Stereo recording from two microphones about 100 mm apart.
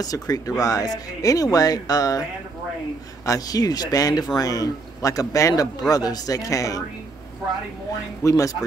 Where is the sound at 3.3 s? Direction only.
40° left (ahead or behind).